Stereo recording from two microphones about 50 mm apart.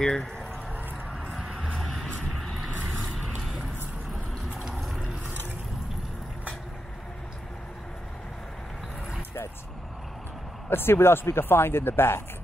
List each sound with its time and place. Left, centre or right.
0.0 s speech: centre
1.3 s music: centre
3.2 s a sound: centre
10.7 s speech: left